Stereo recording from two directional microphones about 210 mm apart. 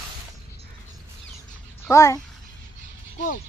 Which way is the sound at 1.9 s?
15° left (ahead or behind).